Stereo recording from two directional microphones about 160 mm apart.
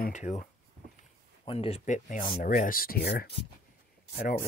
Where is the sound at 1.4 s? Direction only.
35° left (ahead or behind); by 3.3 s 90° left.